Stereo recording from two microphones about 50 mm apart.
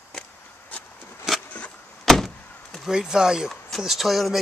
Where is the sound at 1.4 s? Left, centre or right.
Left.